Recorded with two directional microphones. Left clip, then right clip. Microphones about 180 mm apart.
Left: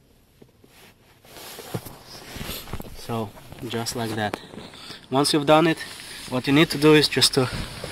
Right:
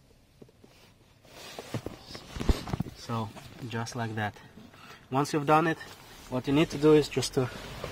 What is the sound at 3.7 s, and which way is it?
Speech, 20° left (ahead or behind).